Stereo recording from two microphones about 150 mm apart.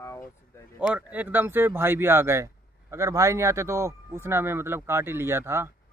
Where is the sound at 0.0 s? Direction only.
20° left (ahead or behind).